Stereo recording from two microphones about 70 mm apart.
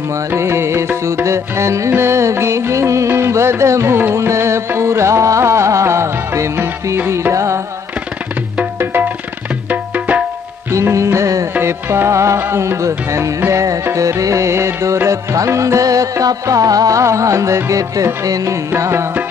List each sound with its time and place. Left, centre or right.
0.4 s music: right
9.7 s tabla: right
10.7 s music: right
18.8 s music: right